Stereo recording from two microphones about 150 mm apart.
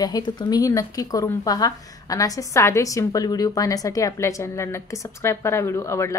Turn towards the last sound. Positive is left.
turn(degrees=20)  # may be behind; listen again after turning